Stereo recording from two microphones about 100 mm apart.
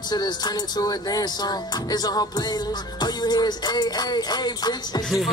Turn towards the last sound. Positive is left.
turn(degrees=45)  # may be behind; listen again after turning